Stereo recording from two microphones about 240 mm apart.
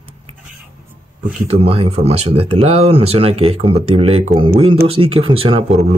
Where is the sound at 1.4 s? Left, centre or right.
Right.